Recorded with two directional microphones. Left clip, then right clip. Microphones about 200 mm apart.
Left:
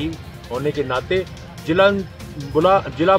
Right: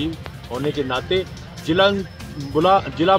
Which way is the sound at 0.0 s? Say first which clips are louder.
Right 1 dB; 5° left (ahead or behind).